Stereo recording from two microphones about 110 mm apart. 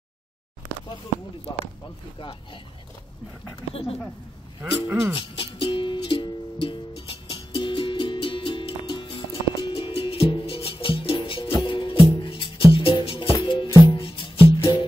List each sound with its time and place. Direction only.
2.1 s speech: 50° left (ahead or behind)
3.7 s speech: 60° left (ahead or behind)
4.6 s speech: 20° right (ahead or behind)
5.1 s music: 55° left (ahead or behind)